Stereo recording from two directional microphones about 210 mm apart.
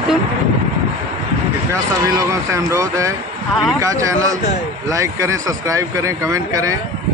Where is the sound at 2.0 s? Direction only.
15° right (ahead or behind).